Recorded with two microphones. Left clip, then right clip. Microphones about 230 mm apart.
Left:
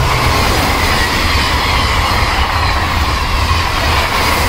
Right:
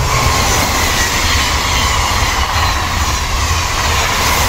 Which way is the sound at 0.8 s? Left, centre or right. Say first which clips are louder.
Left 1 dB; right.